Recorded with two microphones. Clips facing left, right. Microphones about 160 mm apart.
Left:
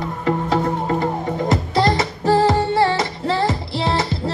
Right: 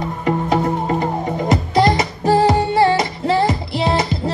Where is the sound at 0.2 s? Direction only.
15° right (ahead or behind).